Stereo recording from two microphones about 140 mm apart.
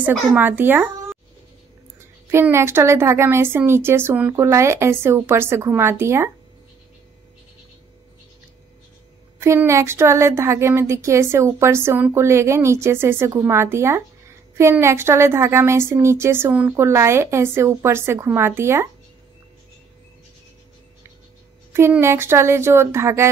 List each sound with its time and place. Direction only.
0.0 s a woman's voice: 15° right (ahead or behind)
2.0 s a woman's voice: 20° right (ahead or behind)
9.4 s speech: 20° right (ahead or behind)
21.7 s speech: 20° right (ahead or behind)